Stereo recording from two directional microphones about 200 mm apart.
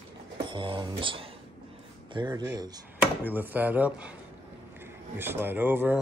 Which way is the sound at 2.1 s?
20° right (ahead or behind).